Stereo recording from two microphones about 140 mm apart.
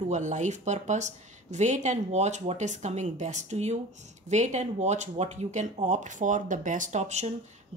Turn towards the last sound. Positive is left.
turn(degrees=-55)  # may be behind; listen again after turning